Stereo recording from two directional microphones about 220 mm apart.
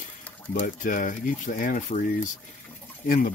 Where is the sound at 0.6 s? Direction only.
35° left (ahead or behind).